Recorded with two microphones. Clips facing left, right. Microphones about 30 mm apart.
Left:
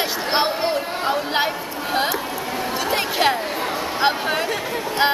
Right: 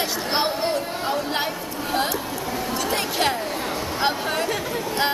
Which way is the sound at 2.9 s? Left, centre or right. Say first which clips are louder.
Left 4 dB; centre.